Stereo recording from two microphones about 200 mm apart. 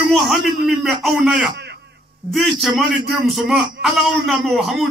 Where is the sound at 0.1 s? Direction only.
Centre (ahead or behind).